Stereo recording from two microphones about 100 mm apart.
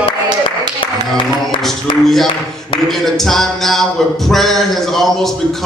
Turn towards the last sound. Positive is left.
turn(degrees=0)  # may be behind; listen again after turning